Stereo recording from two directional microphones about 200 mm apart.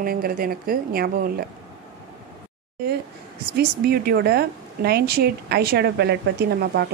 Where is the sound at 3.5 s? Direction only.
50° right (ahead or behind).